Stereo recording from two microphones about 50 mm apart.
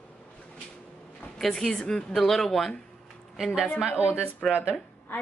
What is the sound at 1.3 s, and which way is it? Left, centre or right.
Speech, centre.